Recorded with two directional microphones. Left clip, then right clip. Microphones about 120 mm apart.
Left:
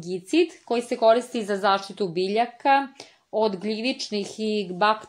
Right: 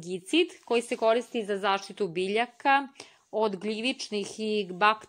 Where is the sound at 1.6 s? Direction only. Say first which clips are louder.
Left 7 dB; 5° right (ahead or behind).